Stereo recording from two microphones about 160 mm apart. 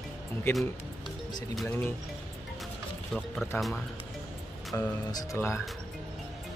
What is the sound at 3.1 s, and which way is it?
Speech, centre (ahead or behind).